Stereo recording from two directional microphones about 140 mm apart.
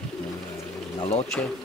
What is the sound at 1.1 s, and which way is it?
Speech, 5° left (ahead or behind).